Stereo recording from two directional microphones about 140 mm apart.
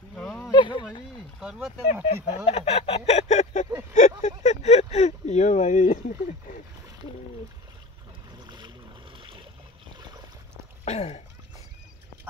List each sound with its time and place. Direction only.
0.1 s a sound: 5° left (ahead or behind)
0.5 s speech: 35° left (ahead or behind)
1.4 s speech: 5° right (ahead or behind)
2.0 s speech: 45° left (ahead or behind); by 6.6 s 65° left (ahead or behind)
8.3 s boat: 30° right (ahead or behind)
10.9 s a sound: 50° left (ahead or behind)